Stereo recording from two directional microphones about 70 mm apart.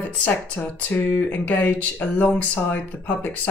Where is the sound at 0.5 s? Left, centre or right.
Left.